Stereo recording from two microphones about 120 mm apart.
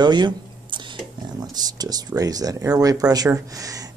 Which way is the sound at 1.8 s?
30° right (ahead or behind).